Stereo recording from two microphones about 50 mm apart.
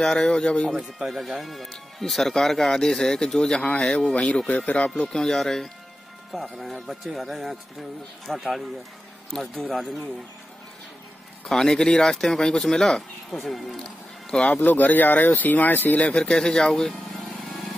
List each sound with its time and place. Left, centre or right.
0.0 s speech: centre
0.7 s speech: centre; by 5.0 s left
5.0 s speech: centre
11.4 s speech: centre
13.7 s music: centre
14.6 s speech: left
16.0 s speech: left